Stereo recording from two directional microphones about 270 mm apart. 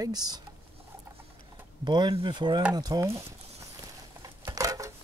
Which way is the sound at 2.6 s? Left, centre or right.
Centre.